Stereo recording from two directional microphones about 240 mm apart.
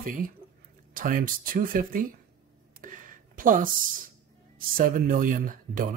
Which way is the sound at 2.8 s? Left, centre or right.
Right.